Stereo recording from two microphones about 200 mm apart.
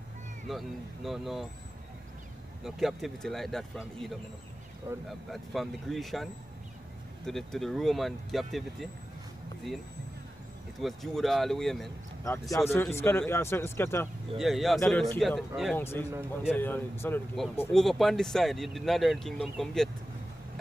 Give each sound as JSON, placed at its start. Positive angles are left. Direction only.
{"t": 0.5, "sound": "speech", "side_deg": 0}
{"t": 2.6, "sound": "speech", "side_deg": 0}
{"t": 5.3, "sound": "speech", "side_deg": 0}
{"t": 10.8, "sound": "speech", "side_deg": 0}
{"t": 12.3, "sound": "speech", "side_deg": 15}
{"t": 14.4, "sound": "speech", "side_deg": 0}
{"t": 15.8, "sound": "speech", "side_deg": 10}
{"t": 16.1, "sound": "a man's voice", "side_deg": -10}
{"t": 16.5, "sound": "speech", "side_deg": 10}